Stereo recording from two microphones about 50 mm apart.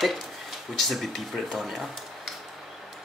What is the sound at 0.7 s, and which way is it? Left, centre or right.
Speech, centre.